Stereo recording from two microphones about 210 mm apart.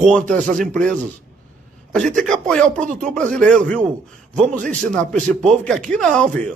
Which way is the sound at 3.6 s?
35° right (ahead or behind).